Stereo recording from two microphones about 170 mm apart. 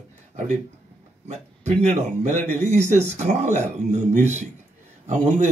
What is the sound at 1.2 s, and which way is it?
Speech, 40° right (ahead or behind).